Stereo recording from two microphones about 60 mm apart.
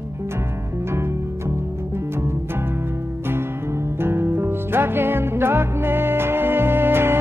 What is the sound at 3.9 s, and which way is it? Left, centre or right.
Music, right.